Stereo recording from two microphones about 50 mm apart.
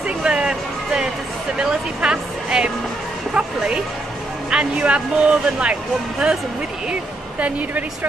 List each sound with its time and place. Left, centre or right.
0.0 s music: right
1.6 s speech: centre
6.9 s speech: right